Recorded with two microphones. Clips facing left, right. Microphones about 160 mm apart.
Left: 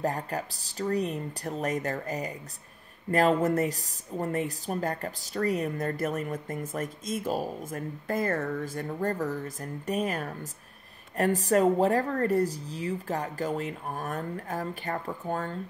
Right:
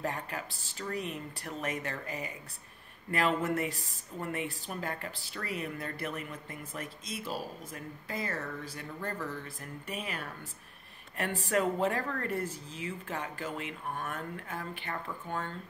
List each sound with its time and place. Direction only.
0.0 s a woman's voice: 40° left (ahead or behind)